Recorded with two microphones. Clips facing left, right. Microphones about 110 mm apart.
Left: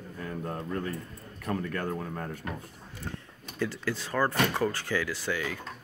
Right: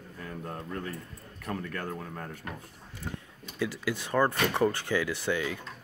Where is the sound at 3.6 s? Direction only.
10° right (ahead or behind).